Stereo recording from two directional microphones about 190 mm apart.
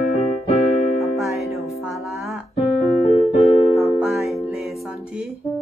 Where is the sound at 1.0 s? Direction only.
Centre (ahead or behind).